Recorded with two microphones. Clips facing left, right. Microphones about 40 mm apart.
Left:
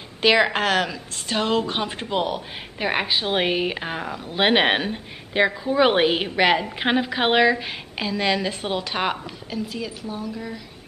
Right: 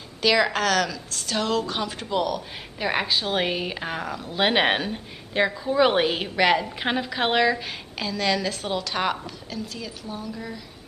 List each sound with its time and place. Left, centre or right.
0.2 s a woman's voice: left; by 10.6 s centre